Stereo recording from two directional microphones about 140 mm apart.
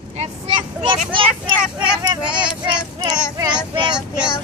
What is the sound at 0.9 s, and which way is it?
Speech, 35° right (ahead or behind).